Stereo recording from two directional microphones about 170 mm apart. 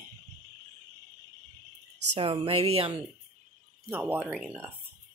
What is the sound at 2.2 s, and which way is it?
Speech, 30° right (ahead or behind).